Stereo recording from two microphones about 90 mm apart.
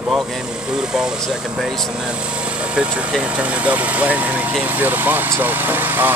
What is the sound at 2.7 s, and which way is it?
Speech, 10° right (ahead or behind).